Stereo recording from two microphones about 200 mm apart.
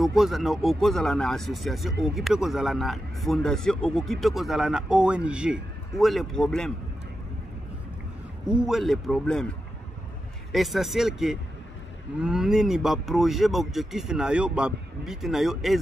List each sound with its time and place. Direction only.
0.0 s speech: centre (ahead or behind)
8.5 s speech: centre (ahead or behind)
10.5 s speech: centre (ahead or behind)